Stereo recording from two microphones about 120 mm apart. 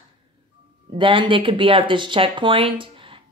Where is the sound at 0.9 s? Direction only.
45° right (ahead or behind).